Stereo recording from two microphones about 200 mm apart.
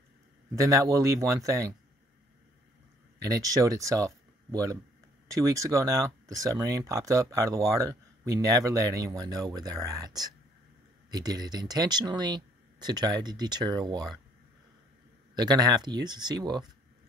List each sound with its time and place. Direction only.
0.5 s speech: 15° right (ahead or behind)
3.3 s speech: 15° right (ahead or behind)
15.3 s speech: 20° right (ahead or behind)